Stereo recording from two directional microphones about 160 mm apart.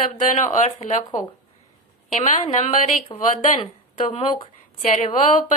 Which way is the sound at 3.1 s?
25° left (ahead or behind).